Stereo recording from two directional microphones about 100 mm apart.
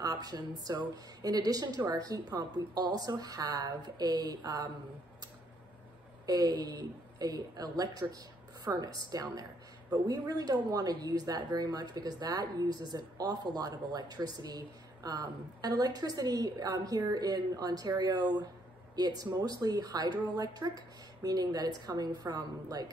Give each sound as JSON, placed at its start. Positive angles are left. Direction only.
{"t": 0.0, "sound": "a woman's voice", "side_deg": -40}
{"t": 6.2, "sound": "a woman's voice", "side_deg": -40}